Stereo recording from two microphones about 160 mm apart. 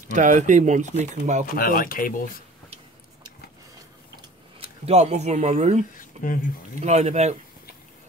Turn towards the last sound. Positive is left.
turn(degrees=-45)  # may be behind; listen again after turning